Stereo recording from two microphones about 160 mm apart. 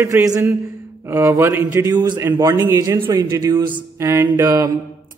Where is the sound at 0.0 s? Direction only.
20° right (ahead or behind).